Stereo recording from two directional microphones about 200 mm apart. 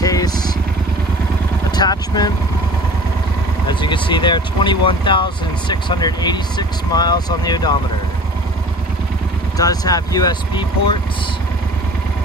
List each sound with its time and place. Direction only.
0.0 s vehicle: 20° left (ahead or behind)
1.8 s vehicle: 20° left (ahead or behind)
3.6 s speech: 25° left (ahead or behind)
9.6 s speech: 20° left (ahead or behind)